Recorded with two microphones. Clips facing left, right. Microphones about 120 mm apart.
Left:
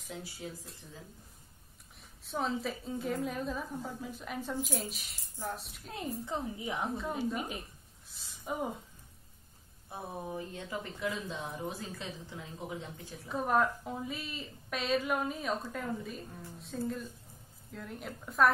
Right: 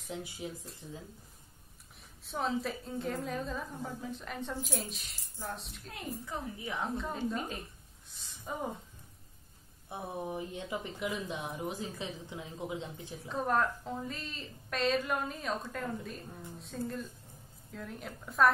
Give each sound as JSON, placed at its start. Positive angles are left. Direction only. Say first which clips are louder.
{"t": 0.1, "sound": "speech", "louder": "right 2 dB", "side_deg": -15}
{"t": 2.2, "sound": "a woman's voice", "louder": "even", "side_deg": 0}
{"t": 5.9, "sound": "a woman's voice", "louder": "left 4 dB", "side_deg": 25}
{"t": 6.9, "sound": "a woman's voice", "louder": "even", "side_deg": 0}
{"t": 7.2, "sound": "speech", "louder": "even", "side_deg": 10}
{"t": 8.1, "sound": "speech", "louder": "left 3 dB", "side_deg": 0}
{"t": 9.8, "sound": "speech", "louder": "right 2 dB", "side_deg": -20}
{"t": 13.3, "sound": "a woman's voice", "louder": "left 1 dB", "side_deg": 5}